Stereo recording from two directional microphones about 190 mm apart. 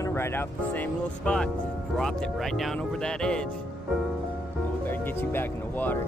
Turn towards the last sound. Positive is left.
turn(degrees=10)  # may be behind; listen again after turning